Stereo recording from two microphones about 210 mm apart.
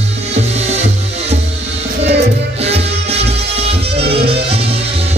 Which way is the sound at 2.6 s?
30° right (ahead or behind).